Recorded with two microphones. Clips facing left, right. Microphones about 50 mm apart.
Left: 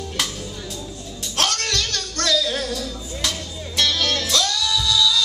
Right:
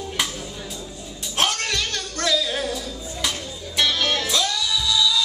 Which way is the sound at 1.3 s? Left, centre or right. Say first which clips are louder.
Even; centre.